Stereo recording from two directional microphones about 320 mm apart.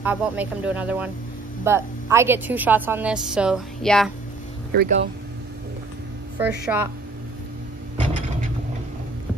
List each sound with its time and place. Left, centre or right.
0.0 s a woman's voice: centre
4.7 s speech: right
6.3 s a woman's voice: centre